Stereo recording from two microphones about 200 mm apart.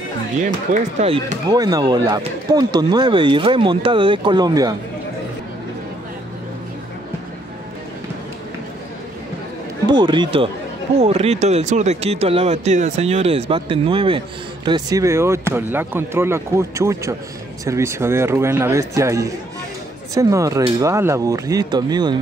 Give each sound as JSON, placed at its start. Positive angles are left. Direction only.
{"t": 0.9, "sound": "speech", "side_deg": -30}
{"t": 9.8, "sound": "speech", "side_deg": -20}